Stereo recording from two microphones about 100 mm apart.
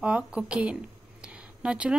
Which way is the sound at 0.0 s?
10° right (ahead or behind).